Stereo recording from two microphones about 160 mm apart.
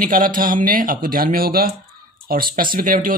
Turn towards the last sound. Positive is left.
turn(degrees=-60)  # may be behind; listen again after turning